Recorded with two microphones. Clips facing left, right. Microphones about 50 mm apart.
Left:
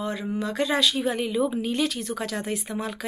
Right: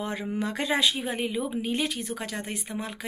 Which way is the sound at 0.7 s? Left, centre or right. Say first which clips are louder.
Left 2 dB; right.